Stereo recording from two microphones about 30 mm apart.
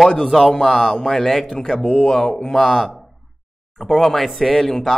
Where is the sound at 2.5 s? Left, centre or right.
Centre.